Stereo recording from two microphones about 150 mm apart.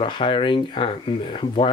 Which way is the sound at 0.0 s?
35° left (ahead or behind).